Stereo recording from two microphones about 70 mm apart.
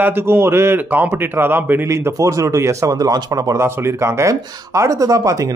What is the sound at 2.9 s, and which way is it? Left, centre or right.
Speech, right.